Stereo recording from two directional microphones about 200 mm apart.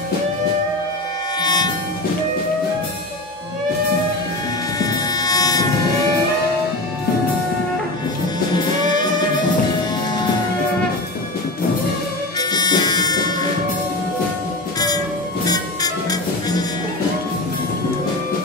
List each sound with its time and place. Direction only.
1.4 s music: 20° left (ahead or behind)
4.7 s train: 20° left (ahead or behind)
8.9 s music: 20° left (ahead or behind)
12.4 s music: 20° left (ahead or behind)
15.4 s music: 20° left (ahead or behind)